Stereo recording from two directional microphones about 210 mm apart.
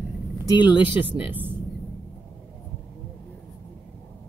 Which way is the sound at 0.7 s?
5° right (ahead or behind).